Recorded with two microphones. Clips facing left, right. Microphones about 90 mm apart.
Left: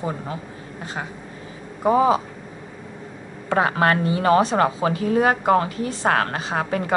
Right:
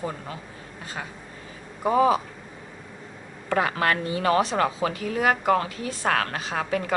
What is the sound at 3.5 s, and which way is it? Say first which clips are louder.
A woman's voice: left 4 dB; 30° left (ahead or behind).